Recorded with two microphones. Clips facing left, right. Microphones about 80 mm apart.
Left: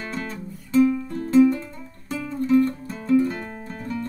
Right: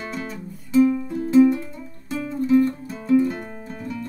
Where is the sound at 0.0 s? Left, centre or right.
Centre.